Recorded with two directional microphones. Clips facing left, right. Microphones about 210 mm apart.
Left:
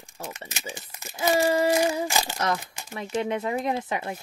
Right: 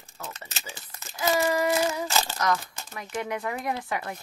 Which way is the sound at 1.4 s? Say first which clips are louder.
Left 4 dB; 30° left (ahead or behind).